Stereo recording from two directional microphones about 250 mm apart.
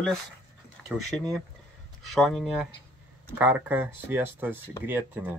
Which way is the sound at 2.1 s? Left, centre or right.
Centre.